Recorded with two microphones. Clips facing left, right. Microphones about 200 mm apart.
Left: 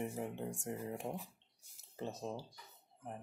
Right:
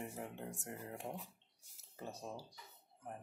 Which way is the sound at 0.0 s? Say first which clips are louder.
Left 6 dB; 20° left (ahead or behind).